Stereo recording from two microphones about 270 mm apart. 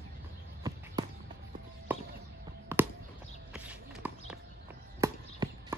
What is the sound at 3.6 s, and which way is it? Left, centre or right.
Horse, centre.